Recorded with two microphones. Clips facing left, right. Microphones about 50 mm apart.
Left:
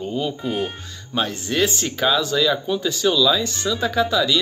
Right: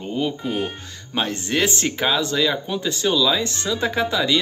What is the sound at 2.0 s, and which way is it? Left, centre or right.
Speech, right.